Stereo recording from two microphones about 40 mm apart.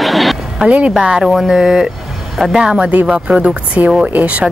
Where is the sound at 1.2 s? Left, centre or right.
Centre.